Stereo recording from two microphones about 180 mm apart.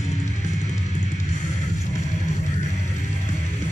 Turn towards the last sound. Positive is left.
turn(degrees=40)  # may be behind; listen again after turning